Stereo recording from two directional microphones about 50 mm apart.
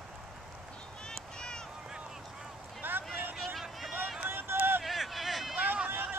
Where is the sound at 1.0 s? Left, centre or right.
Centre.